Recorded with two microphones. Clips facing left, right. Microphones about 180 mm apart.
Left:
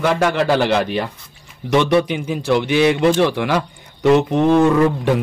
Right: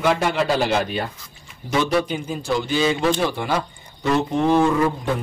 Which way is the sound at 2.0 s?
75° left (ahead or behind).